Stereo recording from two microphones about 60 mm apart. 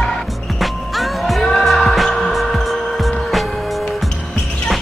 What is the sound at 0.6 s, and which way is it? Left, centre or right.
Music, centre.